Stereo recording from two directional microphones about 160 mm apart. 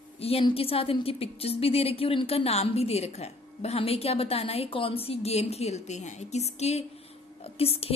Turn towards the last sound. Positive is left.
turn(degrees=40)  # may be behind; listen again after turning